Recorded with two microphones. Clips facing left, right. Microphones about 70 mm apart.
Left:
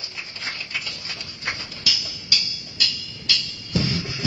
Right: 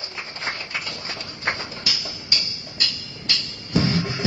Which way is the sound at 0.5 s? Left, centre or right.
Right.